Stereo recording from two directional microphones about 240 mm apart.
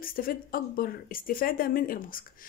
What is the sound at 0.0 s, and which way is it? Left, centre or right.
Speech, left.